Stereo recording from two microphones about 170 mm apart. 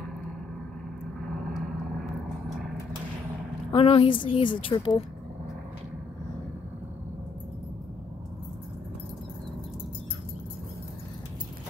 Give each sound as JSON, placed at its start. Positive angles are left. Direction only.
{"t": 3.7, "sound": "a woman's voice", "side_deg": 30}